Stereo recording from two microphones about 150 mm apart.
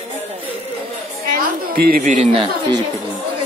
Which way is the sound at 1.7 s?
80° right.